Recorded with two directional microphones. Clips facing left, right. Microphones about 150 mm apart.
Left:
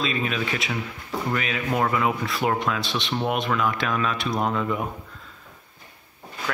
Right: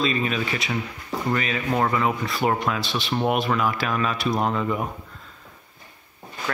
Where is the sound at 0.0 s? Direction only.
Centre (ahead or behind).